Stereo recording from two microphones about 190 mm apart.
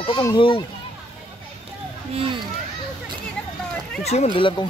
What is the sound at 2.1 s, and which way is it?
Speech, 25° right (ahead or behind).